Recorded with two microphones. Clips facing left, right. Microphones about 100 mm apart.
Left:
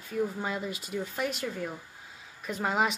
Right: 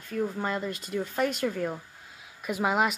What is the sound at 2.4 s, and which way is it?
Speech, 5° right (ahead or behind).